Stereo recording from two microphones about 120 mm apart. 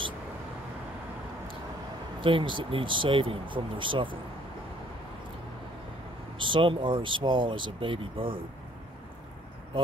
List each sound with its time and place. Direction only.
2.2 s speech: 45° right (ahead or behind)
6.3 s speech: 45° right (ahead or behind)